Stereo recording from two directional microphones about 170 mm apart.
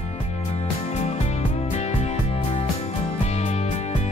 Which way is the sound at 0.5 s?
40° left (ahead or behind).